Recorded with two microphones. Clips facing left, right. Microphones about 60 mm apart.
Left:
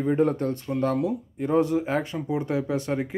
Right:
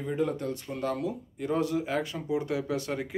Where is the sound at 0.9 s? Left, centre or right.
Left.